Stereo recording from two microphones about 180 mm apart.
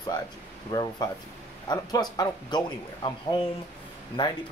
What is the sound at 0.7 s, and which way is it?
Speech, 25° left (ahead or behind).